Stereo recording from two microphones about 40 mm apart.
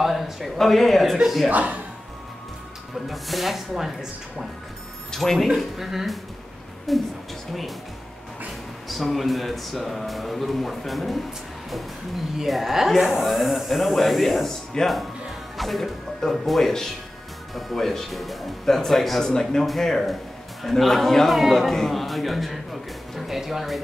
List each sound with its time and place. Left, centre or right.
0.0 s speech: centre
1.5 s speech: right
3.1 s speech: centre
5.1 s a man's voice: centre
5.8 s speech: centre
8.8 s speech: centre
12.4 s speech: centre
14.7 s a man's voice: centre
15.5 s a man's voice: centre